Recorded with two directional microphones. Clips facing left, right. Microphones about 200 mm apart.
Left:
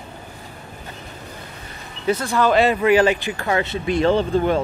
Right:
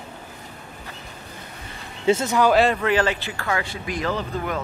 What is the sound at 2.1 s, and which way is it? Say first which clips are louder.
Speech: right 1 dB; 20° right (ahead or behind).